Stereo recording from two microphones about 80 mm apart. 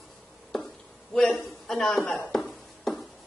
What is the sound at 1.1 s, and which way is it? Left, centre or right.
A woman's voice, centre.